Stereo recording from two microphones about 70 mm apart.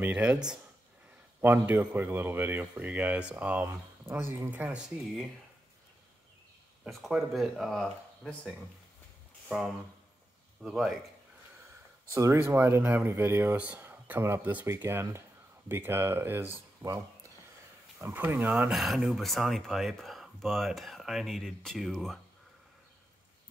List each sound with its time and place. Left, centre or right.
0.0 s speech: centre
1.4 s speech: right
4.1 s speech: left
4.5 s speech: right
6.9 s speech: centre
10.7 s speech: centre
12.1 s speech: right
13.7 s a sound: right
14.2 s speech: right
16.8 s a sound: right
18.0 s speech: right
18.5 s speech: centre